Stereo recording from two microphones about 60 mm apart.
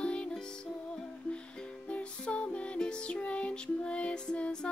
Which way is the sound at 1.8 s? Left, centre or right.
Left.